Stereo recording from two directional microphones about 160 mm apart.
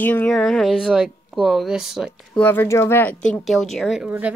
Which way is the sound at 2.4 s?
15° left (ahead or behind).